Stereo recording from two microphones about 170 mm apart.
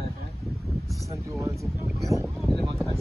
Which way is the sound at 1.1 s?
15° right (ahead or behind).